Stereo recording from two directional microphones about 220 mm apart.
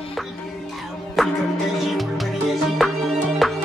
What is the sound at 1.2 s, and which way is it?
Music, centre (ahead or behind).